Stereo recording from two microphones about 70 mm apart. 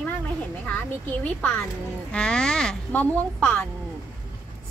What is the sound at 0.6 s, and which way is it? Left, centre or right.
A woman's voice, left.